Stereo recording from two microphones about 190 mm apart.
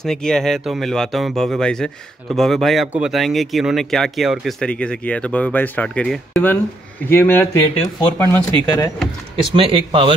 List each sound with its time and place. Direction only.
0.0 s speech: 5° left (ahead or behind)
9.5 s speech: 30° right (ahead or behind)